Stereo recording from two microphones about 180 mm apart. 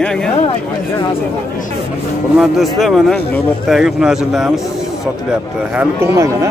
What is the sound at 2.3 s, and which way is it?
Speech, centre (ahead or behind).